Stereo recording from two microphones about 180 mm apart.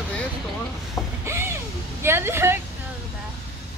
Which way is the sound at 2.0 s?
15° right (ahead or behind).